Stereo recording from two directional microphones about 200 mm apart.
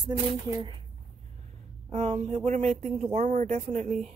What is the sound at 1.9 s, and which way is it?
Speech, 35° right (ahead or behind).